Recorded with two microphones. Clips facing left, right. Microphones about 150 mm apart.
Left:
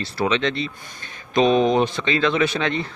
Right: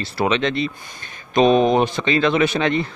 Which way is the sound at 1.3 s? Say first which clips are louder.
Right 2 dB; 50° right (ahead or behind).